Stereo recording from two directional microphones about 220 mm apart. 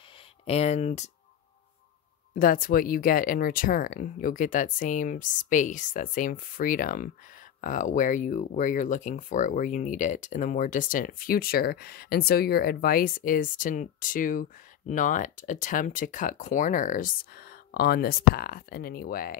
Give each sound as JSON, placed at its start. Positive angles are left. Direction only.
{"t": 0.5, "sound": "speech", "side_deg": 30}
{"t": 2.3, "sound": "speech", "side_deg": 40}